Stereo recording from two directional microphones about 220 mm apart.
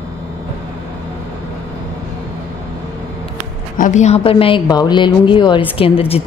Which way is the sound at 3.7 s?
35° left (ahead or behind).